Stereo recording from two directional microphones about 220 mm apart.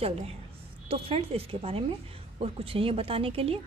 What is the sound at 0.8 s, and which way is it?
A woman's voice, 25° right (ahead or behind).